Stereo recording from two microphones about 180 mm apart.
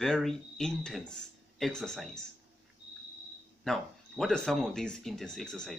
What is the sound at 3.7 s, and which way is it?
Speech, centre (ahead or behind).